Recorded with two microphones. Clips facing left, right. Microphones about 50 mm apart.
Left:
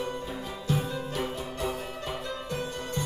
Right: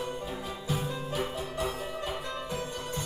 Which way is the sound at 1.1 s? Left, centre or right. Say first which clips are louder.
Even; centre.